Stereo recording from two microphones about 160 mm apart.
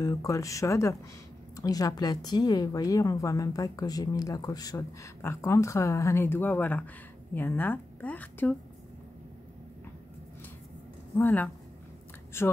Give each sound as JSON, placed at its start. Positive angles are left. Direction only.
{"t": 0.0, "sound": "a woman's voice", "side_deg": 20}
{"t": 11.1, "sound": "a woman's voice", "side_deg": 10}